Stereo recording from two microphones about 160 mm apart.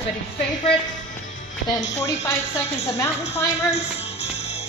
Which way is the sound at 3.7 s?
90° left.